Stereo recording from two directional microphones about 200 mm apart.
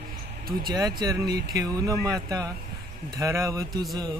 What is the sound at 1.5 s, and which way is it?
Speech, 20° right (ahead or behind).